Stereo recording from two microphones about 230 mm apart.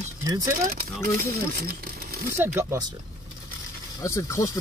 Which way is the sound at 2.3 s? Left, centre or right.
Centre.